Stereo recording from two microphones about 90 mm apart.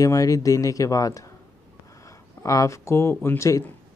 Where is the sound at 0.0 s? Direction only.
40° left (ahead or behind).